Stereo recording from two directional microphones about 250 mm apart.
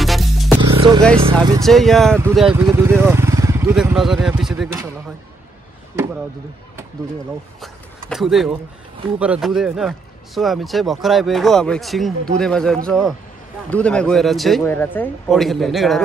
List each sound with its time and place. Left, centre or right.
0.0 s music: centre
0.6 s music: centre
1.6 s speech: centre
7.6 s speech: centre